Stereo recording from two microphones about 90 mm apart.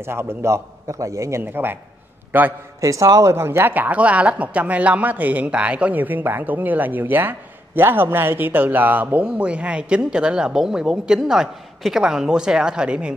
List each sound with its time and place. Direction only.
0.0 s a man's voice: 30° right (ahead or behind)
1.4 s a man's voice: 25° right (ahead or behind)
2.8 s speech: 35° right (ahead or behind); by 13.1 s 10° right (ahead or behind)